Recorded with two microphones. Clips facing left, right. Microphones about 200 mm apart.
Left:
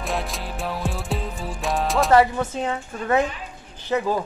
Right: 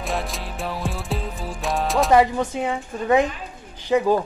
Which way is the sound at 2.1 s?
15° right (ahead or behind).